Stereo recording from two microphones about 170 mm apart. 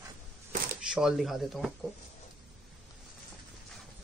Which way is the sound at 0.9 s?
Centre (ahead or behind).